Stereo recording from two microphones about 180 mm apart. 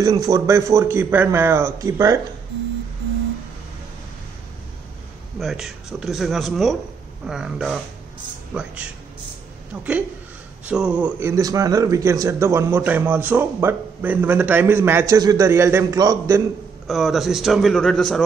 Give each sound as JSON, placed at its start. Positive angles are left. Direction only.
{"t": 0.0, "sound": "speech", "side_deg": -20}
{"t": 5.4, "sound": "a man's voice", "side_deg": 0}
{"t": 10.7, "sound": "speech", "side_deg": -5}
{"t": 16.8, "sound": "a man's voice", "side_deg": 0}